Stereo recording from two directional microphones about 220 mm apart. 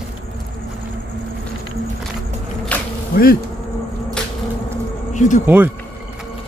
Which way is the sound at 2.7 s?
5° left (ahead or behind).